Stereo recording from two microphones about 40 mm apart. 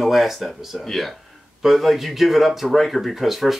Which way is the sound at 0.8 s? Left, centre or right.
Centre.